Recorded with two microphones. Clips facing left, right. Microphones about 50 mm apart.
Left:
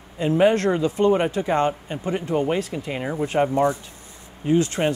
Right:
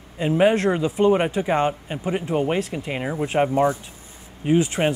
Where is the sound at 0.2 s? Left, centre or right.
Centre.